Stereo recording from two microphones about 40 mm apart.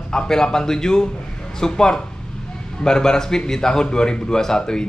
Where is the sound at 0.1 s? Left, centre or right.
Centre.